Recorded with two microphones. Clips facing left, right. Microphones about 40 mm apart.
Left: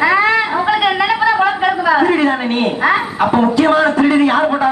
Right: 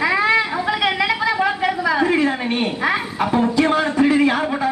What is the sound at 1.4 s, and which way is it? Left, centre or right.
A woman's voice, left.